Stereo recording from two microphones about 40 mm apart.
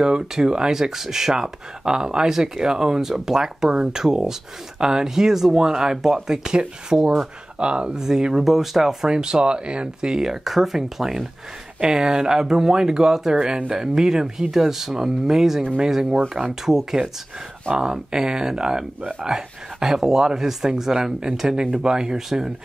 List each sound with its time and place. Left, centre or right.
0.0 s speech: centre
7.5 s speech: right
8.0 s speech: centre
9.1 s speech: right